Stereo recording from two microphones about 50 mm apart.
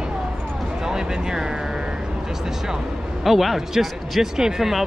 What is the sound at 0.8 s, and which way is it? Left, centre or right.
Speech, centre.